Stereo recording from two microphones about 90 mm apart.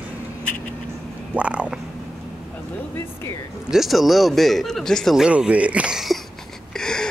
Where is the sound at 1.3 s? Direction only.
15° right (ahead or behind).